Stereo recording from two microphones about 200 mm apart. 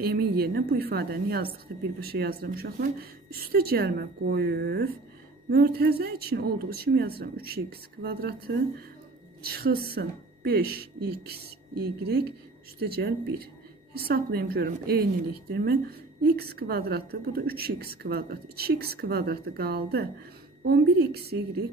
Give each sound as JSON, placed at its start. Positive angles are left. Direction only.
{"t": 0.0, "sound": "a woman's voice", "side_deg": -50}